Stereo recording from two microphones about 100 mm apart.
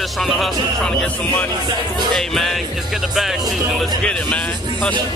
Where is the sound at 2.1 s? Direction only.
Centre (ahead or behind).